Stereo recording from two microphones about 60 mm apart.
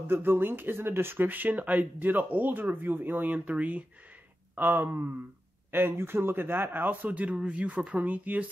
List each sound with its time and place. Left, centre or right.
0.0 s speech: right
4.6 s speech: right